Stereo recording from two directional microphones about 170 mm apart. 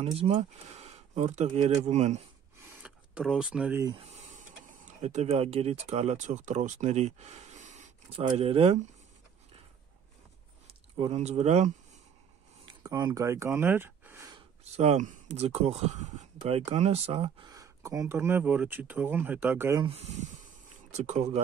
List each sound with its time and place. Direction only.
0.0 s speech: 35° right (ahead or behind)
2.8 s speech: 5° right (ahead or behind)
3.8 s speech: 30° right (ahead or behind)
4.1 s speech: 45° right (ahead or behind)
11.0 s speech: 40° right (ahead or behind)
12.6 s a sound: 25° right (ahead or behind)
14.6 s speech: 40° right (ahead or behind); by 19.8 s 15° right (ahead or behind)
19.8 s a sound: 35° right (ahead or behind)